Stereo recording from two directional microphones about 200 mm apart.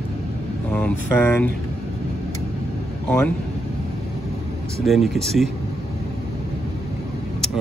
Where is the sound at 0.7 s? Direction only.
10° left (ahead or behind).